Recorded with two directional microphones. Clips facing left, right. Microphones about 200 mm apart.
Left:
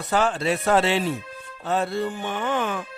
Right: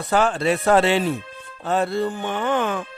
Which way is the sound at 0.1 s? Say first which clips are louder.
Right 3 dB; 55° right (ahead or behind).